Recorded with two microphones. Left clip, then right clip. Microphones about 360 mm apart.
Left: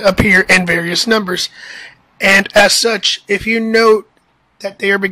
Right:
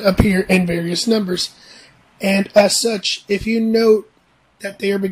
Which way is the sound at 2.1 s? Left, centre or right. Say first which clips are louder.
Left 9 dB; left.